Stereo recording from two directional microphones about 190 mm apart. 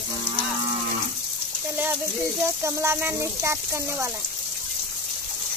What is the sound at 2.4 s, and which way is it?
Speech, 15° right (ahead or behind).